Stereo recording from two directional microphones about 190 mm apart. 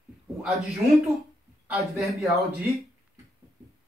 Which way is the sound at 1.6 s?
5° right (ahead or behind).